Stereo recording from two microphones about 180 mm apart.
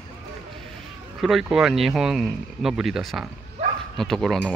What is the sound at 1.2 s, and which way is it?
Speech, centre (ahead or behind).